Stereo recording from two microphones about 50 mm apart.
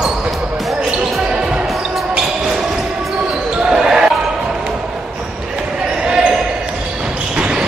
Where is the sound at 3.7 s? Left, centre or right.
Centre.